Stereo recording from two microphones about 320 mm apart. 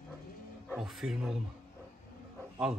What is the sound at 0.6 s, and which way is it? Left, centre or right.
Speech, centre.